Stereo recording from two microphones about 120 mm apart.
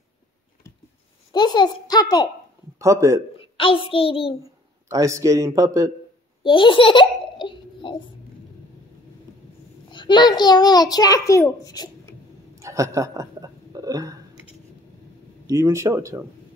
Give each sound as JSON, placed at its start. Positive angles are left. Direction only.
{"t": 1.3, "sound": "a child's voice", "side_deg": 35}
{"t": 2.8, "sound": "a man's voice", "side_deg": -25}
{"t": 3.3, "sound": "a child's voice", "side_deg": 50}
{"t": 4.8, "sound": "a man's voice", "side_deg": -25}
{"t": 6.4, "sound": "laughter", "side_deg": 45}
{"t": 9.8, "sound": "a child's voice", "side_deg": 40}
{"t": 12.5, "sound": "a sound", "side_deg": -25}
{"t": 15.4, "sound": "a man's voice", "side_deg": -30}